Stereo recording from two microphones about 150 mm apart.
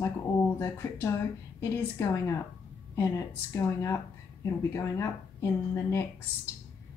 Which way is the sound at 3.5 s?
20° left (ahead or behind).